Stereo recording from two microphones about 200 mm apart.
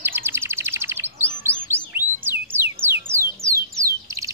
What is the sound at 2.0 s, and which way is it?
Music, 10° right (ahead or behind).